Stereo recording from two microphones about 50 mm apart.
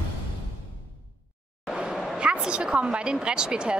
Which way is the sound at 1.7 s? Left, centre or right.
Centre.